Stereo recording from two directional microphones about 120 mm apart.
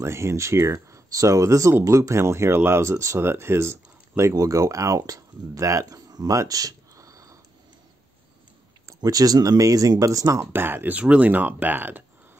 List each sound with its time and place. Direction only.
0.0 s speech: 25° right (ahead or behind)
8.8 s speech: 30° right (ahead or behind); by 12.0 s 15° right (ahead or behind)